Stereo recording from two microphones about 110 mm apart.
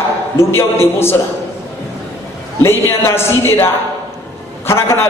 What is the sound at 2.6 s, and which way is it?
A man's voice, 20° left (ahead or behind).